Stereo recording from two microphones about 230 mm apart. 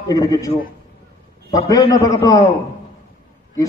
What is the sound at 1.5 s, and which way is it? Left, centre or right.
Speech, centre.